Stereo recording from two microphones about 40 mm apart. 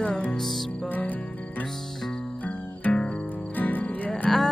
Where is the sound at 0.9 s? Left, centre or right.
Left.